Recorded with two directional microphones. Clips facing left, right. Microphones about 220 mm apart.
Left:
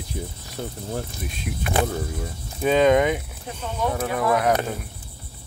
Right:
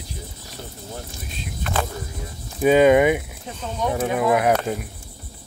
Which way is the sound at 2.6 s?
10° right (ahead or behind).